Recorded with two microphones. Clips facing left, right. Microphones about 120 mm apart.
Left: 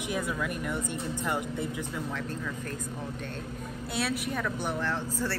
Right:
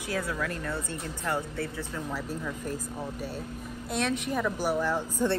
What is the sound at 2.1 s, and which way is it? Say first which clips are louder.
Speech: right 1 dB; 10° right (ahead or behind).